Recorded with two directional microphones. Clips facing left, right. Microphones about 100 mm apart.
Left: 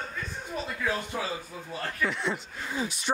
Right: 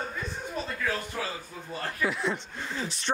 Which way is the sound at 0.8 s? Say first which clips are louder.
Left 3 dB; 15° left (ahead or behind).